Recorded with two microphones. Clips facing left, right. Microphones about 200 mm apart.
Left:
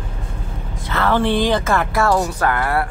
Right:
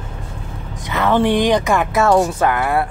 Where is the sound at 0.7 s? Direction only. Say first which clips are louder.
Right 2 dB; 15° right (ahead or behind).